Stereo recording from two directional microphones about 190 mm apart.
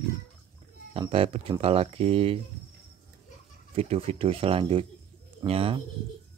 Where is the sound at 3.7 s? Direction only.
30° right (ahead or behind).